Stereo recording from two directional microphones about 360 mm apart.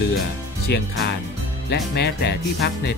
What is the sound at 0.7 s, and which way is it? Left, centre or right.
Speech, left.